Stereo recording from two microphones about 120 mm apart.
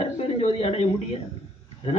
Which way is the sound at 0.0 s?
60° left (ahead or behind).